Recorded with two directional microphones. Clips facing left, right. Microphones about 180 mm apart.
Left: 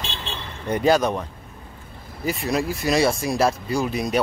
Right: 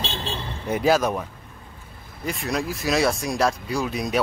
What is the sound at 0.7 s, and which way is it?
Speech, 5° right (ahead or behind).